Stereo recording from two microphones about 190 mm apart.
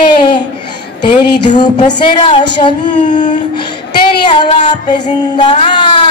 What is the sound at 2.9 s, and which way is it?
Music, 40° left (ahead or behind).